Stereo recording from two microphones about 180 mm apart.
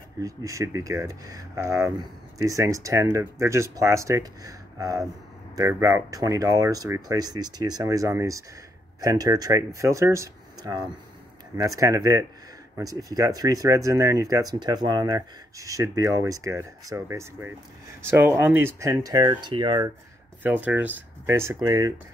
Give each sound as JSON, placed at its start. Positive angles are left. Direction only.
{"t": 0.2, "sound": "speech", "side_deg": -20}
{"t": 20.4, "sound": "speech", "side_deg": -10}